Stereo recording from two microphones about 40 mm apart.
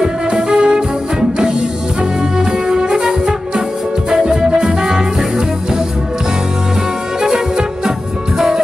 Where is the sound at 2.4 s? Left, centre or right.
Centre.